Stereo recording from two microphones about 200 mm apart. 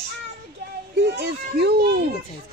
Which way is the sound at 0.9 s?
55° right (ahead or behind).